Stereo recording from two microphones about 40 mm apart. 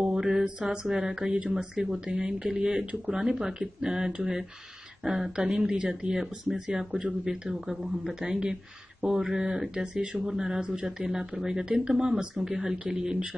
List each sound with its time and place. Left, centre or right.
0.0 s mantra: centre
0.7 s speech: centre
5.8 s speech: right
6.1 s speech: centre
8.1 s speech: centre